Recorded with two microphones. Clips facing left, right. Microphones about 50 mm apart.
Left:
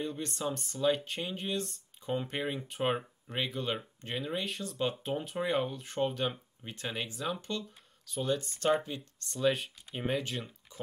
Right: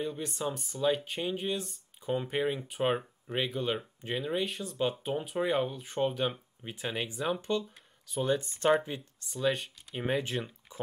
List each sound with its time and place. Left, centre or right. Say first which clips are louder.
0.0 s speech: right 1 dB; centre
9.3 s speech: left 1 dB; centre
10.2 s speech: right 4 dB; centre